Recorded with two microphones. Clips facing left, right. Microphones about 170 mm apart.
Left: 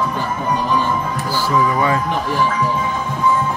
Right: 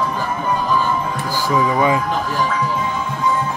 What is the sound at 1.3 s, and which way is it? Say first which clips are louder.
Speech: even; 15° right (ahead or behind).